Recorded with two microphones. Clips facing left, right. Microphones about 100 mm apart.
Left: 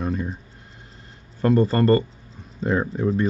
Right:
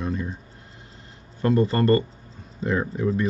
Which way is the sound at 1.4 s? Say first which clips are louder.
Left 2 dB; 35° left (ahead or behind).